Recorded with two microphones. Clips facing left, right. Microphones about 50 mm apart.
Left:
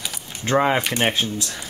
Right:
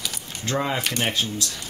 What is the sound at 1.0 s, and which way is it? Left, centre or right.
Speech, left.